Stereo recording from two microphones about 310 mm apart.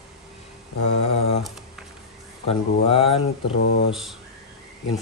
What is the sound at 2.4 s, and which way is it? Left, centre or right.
Speech, centre.